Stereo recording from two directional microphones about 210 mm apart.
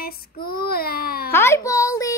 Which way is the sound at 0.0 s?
45° left (ahead or behind).